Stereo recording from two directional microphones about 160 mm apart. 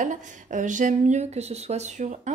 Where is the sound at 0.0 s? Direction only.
50° right (ahead or behind).